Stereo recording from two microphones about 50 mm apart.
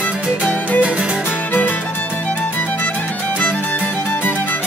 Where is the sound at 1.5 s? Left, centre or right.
Left.